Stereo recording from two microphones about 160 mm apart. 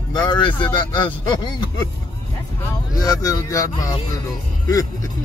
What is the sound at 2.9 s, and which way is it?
Speech, 25° left (ahead or behind).